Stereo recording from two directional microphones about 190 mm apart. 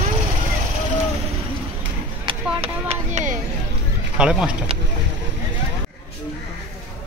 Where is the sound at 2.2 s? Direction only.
30° right (ahead or behind).